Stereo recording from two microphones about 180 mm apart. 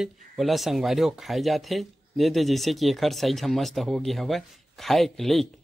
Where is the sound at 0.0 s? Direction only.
Centre (ahead or behind).